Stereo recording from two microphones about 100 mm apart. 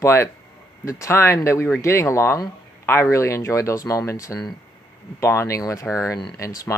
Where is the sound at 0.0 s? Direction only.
30° left (ahead or behind).